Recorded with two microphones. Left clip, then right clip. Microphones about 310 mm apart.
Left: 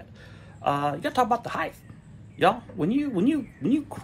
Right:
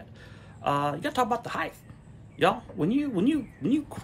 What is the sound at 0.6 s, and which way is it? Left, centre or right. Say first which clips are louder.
Speech: left 1 dB; centre.